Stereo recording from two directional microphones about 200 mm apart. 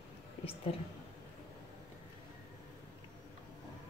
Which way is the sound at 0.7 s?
30° left (ahead or behind).